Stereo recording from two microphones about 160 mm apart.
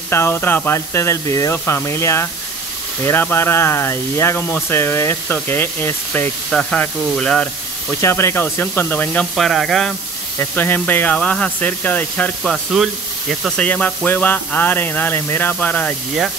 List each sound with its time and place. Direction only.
0.1 s speech: 15° left (ahead or behind)
12.7 s speech: centre (ahead or behind)